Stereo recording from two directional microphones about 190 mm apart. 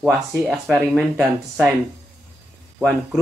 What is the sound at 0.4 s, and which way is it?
Speech, centre (ahead or behind).